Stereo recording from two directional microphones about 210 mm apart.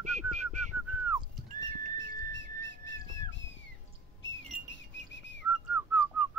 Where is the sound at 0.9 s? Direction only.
10° right (ahead or behind).